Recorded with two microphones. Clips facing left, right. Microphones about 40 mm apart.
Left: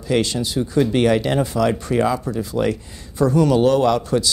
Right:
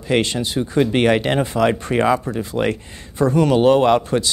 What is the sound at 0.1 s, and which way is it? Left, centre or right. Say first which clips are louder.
Speech: right 1 dB; right.